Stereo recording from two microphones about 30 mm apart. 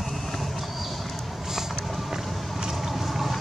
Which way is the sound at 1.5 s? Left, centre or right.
Centre.